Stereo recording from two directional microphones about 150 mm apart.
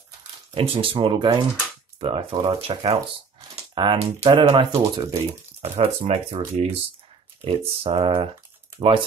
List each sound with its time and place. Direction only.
0.6 s speech: 35° right (ahead or behind)
4.7 s speech: 25° right (ahead or behind)
5.1 s speech: 45° right (ahead or behind)